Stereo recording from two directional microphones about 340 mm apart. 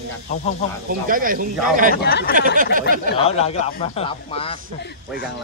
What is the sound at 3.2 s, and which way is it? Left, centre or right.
Speech, centre.